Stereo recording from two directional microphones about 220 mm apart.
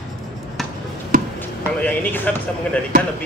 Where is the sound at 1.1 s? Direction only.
40° right (ahead or behind).